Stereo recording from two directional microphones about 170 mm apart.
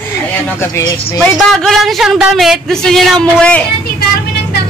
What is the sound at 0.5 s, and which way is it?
Speech, 15° left (ahead or behind).